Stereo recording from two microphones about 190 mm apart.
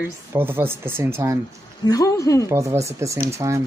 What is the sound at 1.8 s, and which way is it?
Speech, 20° left (ahead or behind).